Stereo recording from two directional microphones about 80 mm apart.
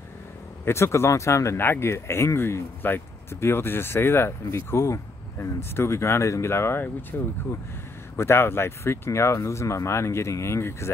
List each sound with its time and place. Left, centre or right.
0.7 s speech: left
8.2 s speech: left